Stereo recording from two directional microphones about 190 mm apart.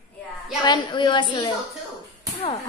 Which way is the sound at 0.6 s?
25° left (ahead or behind).